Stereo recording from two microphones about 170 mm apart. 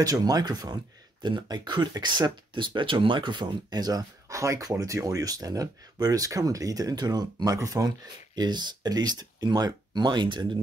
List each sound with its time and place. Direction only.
0.0 s speech: 20° right (ahead or behind)